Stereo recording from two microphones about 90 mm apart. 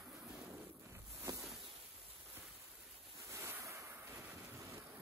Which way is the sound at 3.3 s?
25° right (ahead or behind).